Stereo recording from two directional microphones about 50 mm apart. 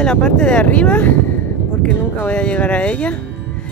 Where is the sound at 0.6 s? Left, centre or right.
Left.